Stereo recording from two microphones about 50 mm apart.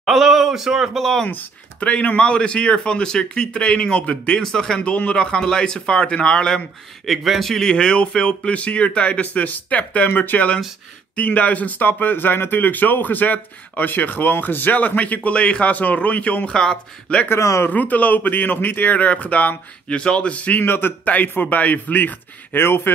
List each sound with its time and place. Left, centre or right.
0.0 s speech: centre
0.9 s speech: centre
1.3 s speech: left
1.9 s a man's voice: left
7.1 s speech: centre
7.7 s speech: left
16.5 s a man's voice: centre
17.4 s speech: left
17.6 s speech: left
20.6 s a man's voice: left
21.1 s speech: left